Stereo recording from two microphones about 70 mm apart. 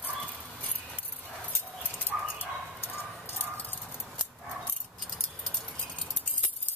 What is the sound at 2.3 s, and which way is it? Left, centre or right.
Dog, left.